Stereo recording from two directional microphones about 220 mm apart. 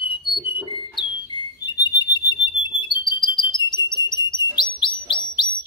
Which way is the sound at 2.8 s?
20° left (ahead or behind).